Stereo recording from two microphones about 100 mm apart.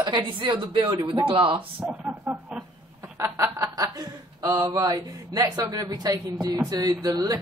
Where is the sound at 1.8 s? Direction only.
10° right (ahead or behind).